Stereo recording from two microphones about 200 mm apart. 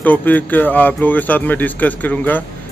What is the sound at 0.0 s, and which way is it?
Speech, 10° left (ahead or behind).